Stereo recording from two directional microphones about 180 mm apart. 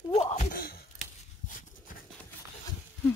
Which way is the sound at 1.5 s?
50° left (ahead or behind).